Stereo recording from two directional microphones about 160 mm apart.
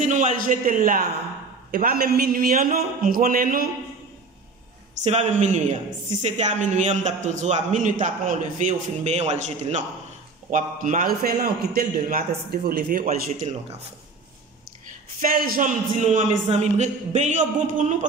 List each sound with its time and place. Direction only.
0.0 s a man's voice: 50° right (ahead or behind)
5.0 s a man's voice: 45° right (ahead or behind)
10.5 s a man's voice: 55° right (ahead or behind)
15.1 s a man's voice: 65° right (ahead or behind)